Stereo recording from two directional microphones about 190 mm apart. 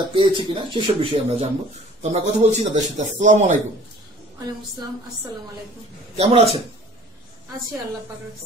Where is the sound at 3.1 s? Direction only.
40° right (ahead or behind).